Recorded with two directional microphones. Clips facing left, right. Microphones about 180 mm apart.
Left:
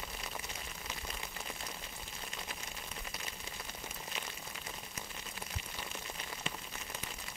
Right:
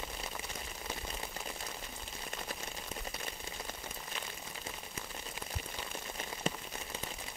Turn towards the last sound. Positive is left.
turn(degrees=-40)  # may be behind; listen again after turning